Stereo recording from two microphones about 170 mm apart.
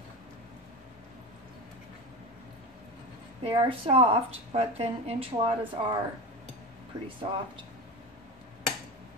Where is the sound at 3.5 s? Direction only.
30° right (ahead or behind).